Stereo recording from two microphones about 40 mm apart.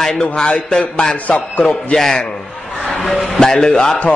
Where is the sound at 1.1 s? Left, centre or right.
Left.